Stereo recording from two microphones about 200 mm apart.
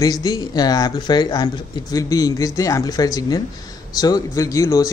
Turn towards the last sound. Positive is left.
turn(degrees=15)  # may be behind; listen again after turning